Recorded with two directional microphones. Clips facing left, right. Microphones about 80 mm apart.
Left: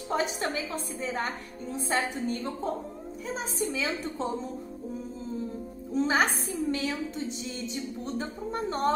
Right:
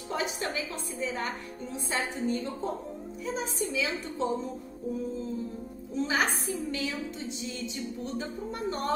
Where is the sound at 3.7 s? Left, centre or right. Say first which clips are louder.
Left 1 dB; left.